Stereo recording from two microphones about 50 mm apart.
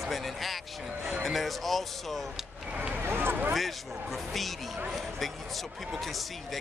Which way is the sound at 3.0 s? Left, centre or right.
Right.